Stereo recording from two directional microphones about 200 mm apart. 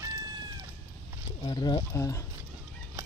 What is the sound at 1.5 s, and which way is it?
Speech, 20° left (ahead or behind).